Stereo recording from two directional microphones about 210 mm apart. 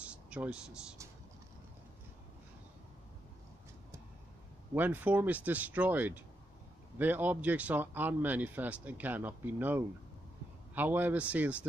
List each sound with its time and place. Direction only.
0.0 s speech: 5° right (ahead or behind)
4.7 s speech: 10° right (ahead or behind)